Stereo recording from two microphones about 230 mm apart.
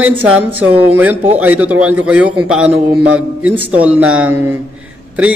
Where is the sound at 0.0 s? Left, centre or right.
Centre.